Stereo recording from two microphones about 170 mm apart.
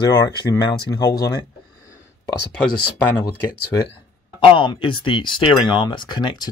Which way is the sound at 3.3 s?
60° left (ahead or behind).